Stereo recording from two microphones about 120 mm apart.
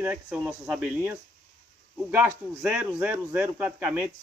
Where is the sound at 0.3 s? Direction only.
5° right (ahead or behind).